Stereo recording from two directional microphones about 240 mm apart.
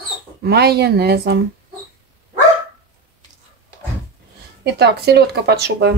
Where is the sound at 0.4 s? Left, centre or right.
Right.